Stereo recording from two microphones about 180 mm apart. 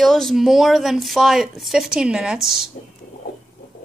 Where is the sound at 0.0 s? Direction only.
Centre (ahead or behind).